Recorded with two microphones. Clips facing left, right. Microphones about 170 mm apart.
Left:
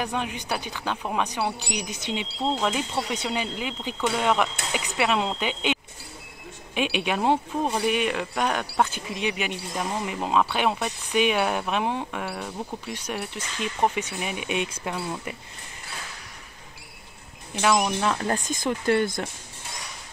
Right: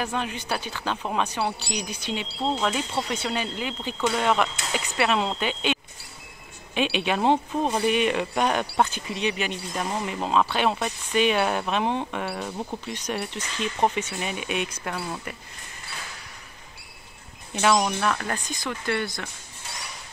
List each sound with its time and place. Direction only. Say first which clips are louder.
0.0 s speech: even; 15° left (ahead or behind); by 8.8 s 5° right (ahead or behind)
8.9 s speech: right 1 dB; 10° left (ahead or behind)
13.9 s speech: even; 15° left (ahead or behind)
17.6 s speech: right 1 dB; 5° left (ahead or behind)
17.8 s speech: left 1 dB; 15° left (ahead or behind)
18.5 s speech: left 6 dB; 45° left (ahead or behind)